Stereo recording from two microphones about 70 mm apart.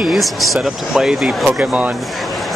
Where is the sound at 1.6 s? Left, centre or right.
Right.